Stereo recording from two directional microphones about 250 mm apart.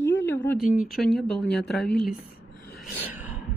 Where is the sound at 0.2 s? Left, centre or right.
Centre.